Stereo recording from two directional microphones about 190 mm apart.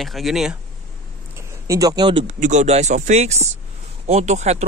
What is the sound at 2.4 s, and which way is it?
Speech, 40° right (ahead or behind).